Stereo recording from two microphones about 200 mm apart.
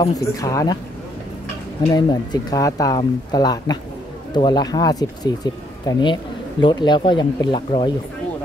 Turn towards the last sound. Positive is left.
turn(degrees=25)  # may be behind; listen again after turning